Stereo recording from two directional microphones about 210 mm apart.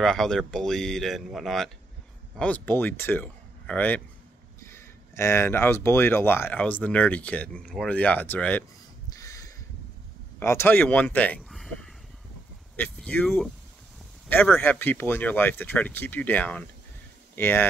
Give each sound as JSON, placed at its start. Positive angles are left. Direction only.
{"t": 0.0, "sound": "speech", "side_deg": 0}
{"t": 9.1, "sound": "a sound", "side_deg": 15}
{"t": 10.4, "sound": "speech", "side_deg": 10}